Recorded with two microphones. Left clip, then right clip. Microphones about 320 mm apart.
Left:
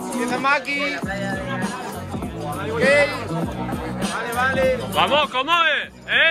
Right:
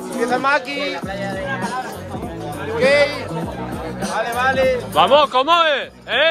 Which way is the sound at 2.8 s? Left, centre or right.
Right.